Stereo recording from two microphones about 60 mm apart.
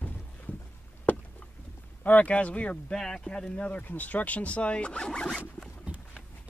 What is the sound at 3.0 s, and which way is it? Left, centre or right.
Speech, centre.